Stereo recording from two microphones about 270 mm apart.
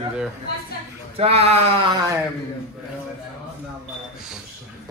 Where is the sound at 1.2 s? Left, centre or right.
Right.